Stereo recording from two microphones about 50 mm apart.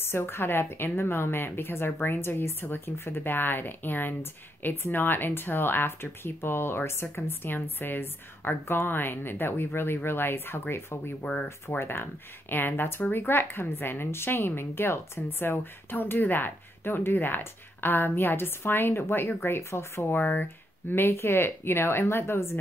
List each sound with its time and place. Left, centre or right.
0.0 s speech: left
20.1 s speech: left
20.9 s speech: left